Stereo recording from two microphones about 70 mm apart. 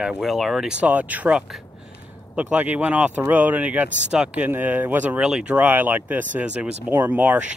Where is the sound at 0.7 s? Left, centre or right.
Right.